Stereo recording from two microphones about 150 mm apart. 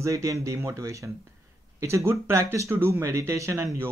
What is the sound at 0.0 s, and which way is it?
A man's voice, 20° right (ahead or behind).